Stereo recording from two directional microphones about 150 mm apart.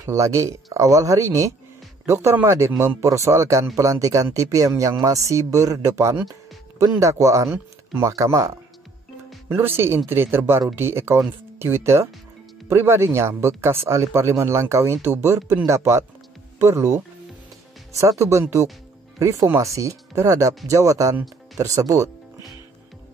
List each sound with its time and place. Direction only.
0.0 s speech: 20° right (ahead or behind)